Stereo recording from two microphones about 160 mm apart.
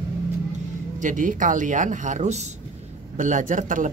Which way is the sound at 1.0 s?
55° right (ahead or behind).